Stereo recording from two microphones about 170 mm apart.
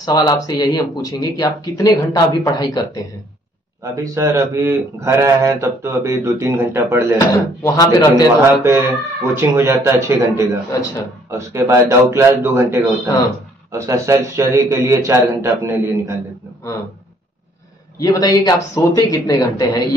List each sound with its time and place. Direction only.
0.0 s speech: 20° left (ahead or behind)
3.9 s a man's voice: 20° right (ahead or behind)
7.6 s speech: 20° left (ahead or behind)
8.6 s a man's voice: 15° right (ahead or behind)
18.0 s speech: 20° left (ahead or behind)